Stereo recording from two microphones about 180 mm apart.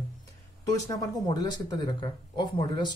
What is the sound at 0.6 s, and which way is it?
Speech, 20° left (ahead or behind).